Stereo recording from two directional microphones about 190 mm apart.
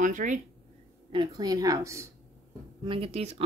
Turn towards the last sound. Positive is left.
turn(degrees=-30)  # may be behind; listen again after turning